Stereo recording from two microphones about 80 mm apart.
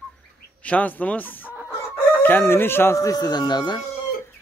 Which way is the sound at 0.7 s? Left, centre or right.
Centre.